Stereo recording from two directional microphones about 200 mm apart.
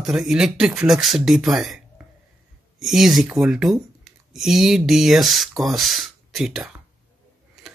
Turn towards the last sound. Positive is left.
turn(degrees=0)  # may be behind; listen again after turning